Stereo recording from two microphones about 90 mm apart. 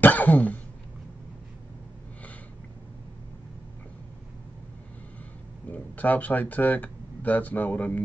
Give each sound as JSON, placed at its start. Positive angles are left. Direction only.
{"t": 0.0, "sound": "throat clearing", "side_deg": 20}
{"t": 5.7, "sound": "speech", "side_deg": 20}